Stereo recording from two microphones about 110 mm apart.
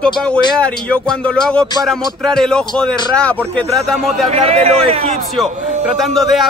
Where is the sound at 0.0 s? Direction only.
10° left (ahead or behind).